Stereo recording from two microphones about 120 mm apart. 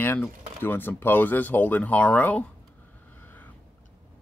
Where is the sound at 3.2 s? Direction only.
15° left (ahead or behind).